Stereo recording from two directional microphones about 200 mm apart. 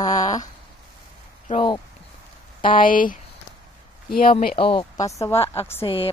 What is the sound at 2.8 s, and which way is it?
Speech, 45° left (ahead or behind).